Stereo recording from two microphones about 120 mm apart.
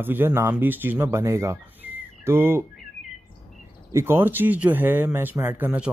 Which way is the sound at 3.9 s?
20° right (ahead or behind).